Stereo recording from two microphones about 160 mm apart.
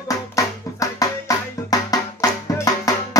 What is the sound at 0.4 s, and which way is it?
Music, 20° left (ahead or behind).